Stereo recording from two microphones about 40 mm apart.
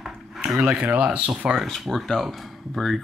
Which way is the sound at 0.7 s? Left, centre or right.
Right.